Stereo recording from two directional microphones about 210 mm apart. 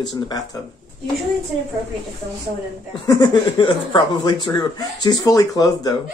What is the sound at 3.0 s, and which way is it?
Speech, 20° left (ahead or behind).